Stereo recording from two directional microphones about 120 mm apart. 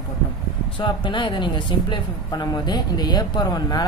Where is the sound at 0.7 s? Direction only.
40° left (ahead or behind).